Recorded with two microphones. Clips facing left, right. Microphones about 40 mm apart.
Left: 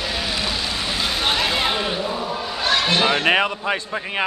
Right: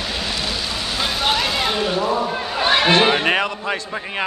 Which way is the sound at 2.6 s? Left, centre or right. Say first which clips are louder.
Right 4 dB; right.